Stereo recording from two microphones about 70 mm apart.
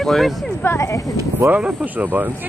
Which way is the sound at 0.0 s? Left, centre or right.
Centre.